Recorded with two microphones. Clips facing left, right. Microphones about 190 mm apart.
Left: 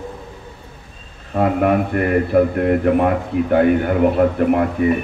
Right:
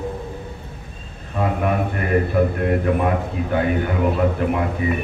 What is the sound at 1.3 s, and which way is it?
Speech, 60° left (ahead or behind).